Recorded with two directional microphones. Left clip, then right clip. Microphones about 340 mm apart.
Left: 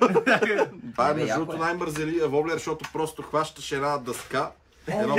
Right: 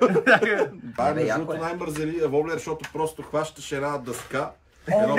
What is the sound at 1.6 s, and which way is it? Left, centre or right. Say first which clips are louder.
Speech: left 2 dB; centre.